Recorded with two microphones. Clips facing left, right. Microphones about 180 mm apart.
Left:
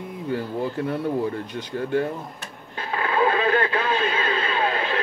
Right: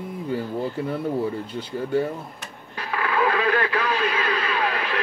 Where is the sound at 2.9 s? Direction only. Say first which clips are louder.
Left 1 dB; 25° left (ahead or behind).